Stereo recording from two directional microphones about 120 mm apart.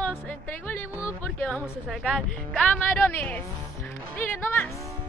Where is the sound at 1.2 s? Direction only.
10° left (ahead or behind).